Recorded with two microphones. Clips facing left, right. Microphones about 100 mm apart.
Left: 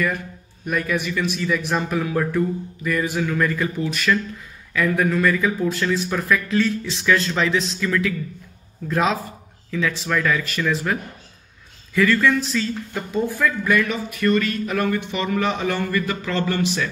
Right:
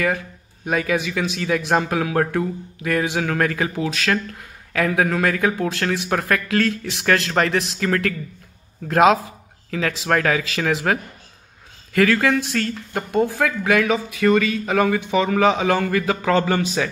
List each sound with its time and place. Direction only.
0.7 s speech: 90° right; by 9.2 s 70° right (ahead or behind)
9.7 s a man's voice: 80° right